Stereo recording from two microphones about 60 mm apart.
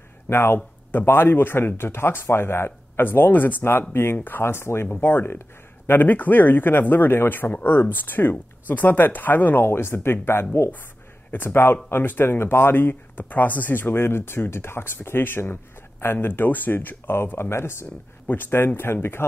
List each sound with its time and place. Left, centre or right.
0.3 s speech: left
3.9 s speech: left
18.3 s speech: left